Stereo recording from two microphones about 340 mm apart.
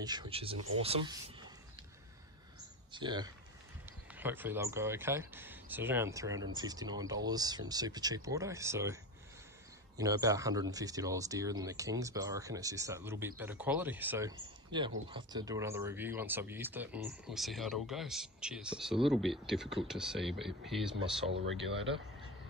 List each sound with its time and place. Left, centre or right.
0.0 s speech: centre
2.9 s speech: centre
9.9 s speech: centre
21.3 s speech: right